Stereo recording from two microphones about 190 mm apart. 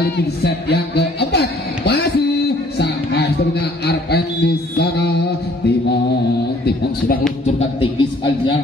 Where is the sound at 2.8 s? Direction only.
60° left (ahead or behind).